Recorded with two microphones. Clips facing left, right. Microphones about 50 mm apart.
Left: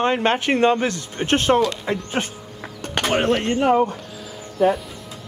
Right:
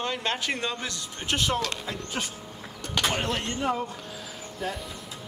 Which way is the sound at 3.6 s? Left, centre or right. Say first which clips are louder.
Left 12 dB; left.